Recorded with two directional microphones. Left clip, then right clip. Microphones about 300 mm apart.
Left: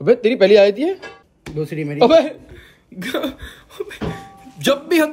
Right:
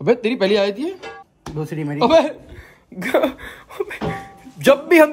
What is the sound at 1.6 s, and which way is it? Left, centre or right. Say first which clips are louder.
Speech: left 1 dB; right.